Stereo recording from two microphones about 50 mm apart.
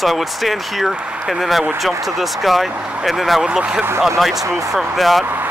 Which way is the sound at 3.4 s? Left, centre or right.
Centre.